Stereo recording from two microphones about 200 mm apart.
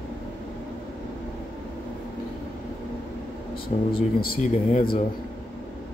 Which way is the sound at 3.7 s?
30° left (ahead or behind).